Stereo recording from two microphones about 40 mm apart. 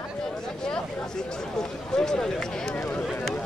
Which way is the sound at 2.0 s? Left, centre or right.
Centre.